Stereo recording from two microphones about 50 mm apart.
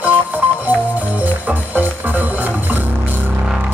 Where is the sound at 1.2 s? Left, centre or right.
Right.